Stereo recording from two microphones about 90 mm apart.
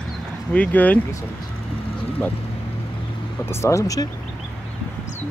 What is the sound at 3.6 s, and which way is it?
Speech, 35° left (ahead or behind).